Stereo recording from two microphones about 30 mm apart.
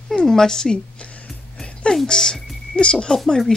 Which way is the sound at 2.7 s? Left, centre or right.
Left.